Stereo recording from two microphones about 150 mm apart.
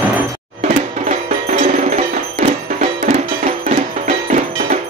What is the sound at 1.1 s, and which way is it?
Music, 50° right (ahead or behind).